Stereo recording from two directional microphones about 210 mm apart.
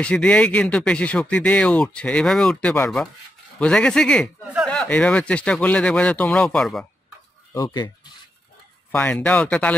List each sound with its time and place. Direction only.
0.0 s speech: 5° left (ahead or behind)
7.5 s speech: 20° left (ahead or behind)
8.9 s speech: 5° left (ahead or behind)